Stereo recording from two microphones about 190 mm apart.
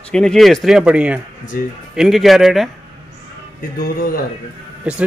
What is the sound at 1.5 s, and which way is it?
Speech, 45° left (ahead or behind).